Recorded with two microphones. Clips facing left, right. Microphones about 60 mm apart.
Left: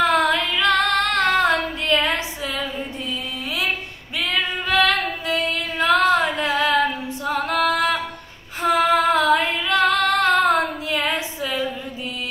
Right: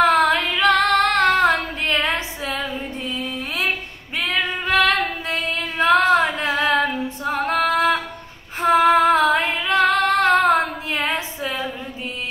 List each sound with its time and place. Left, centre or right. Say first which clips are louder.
0.0 s female singing: right 2 dB; right
4.2 s female singing: right 1 dB; right